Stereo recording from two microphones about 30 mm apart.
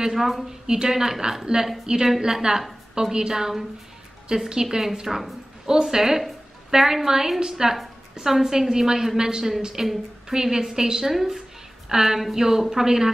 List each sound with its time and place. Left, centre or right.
0.1 s a woman's voice: centre
0.5 s a woman's voice: centre